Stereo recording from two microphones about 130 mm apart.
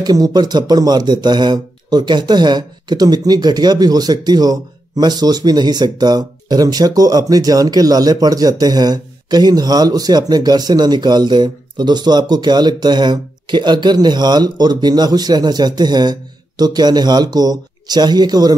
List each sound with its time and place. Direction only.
0.0 s speech: 30° right (ahead or behind)